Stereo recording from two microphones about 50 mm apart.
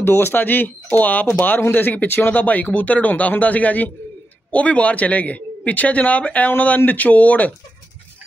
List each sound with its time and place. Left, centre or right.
0.0 s speech: left